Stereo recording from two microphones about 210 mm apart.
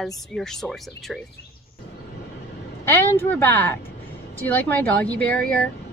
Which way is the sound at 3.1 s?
10° left (ahead or behind).